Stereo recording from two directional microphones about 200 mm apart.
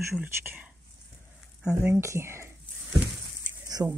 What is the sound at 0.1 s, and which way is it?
Speech, 10° right (ahead or behind).